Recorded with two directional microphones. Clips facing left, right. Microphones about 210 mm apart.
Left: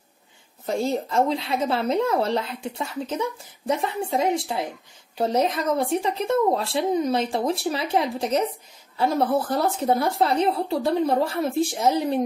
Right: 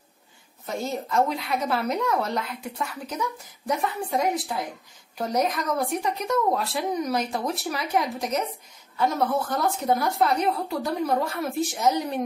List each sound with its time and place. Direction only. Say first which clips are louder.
0.7 s speech: left 5 dB; 30° left (ahead or behind)